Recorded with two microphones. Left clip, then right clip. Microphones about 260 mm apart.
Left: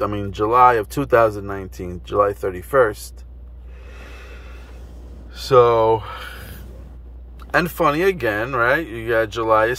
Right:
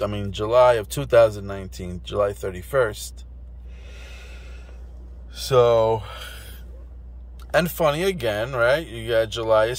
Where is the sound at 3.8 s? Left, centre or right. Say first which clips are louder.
Left 3 dB; centre.